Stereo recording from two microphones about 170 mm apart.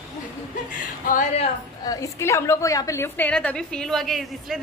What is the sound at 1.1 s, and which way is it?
Speech, 35° left (ahead or behind).